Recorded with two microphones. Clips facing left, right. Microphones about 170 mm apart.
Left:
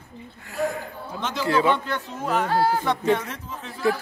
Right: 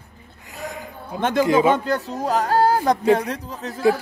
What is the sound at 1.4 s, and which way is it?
Speech, 15° right (ahead or behind).